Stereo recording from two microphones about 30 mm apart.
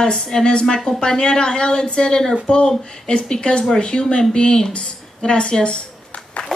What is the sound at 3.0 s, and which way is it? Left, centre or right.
A woman's voice, left.